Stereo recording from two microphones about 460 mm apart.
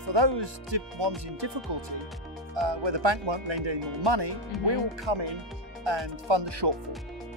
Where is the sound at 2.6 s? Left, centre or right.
Right.